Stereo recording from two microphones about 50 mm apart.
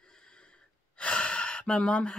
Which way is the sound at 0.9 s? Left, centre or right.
Left.